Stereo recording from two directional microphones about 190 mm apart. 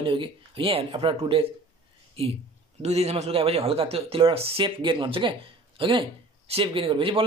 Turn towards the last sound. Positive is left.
turn(degrees=-30)  # may be behind; listen again after turning